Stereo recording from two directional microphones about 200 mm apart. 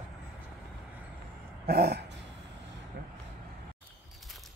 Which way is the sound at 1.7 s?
50° right (ahead or behind).